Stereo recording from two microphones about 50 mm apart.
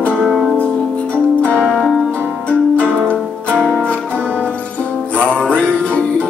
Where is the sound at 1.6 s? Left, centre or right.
Centre.